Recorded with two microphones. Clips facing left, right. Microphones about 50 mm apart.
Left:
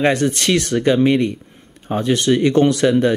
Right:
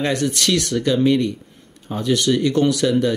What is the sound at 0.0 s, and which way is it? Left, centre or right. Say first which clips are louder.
Speech: left 4 dB; left.